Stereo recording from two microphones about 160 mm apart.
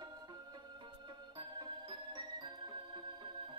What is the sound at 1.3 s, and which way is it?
Music, 30° right (ahead or behind).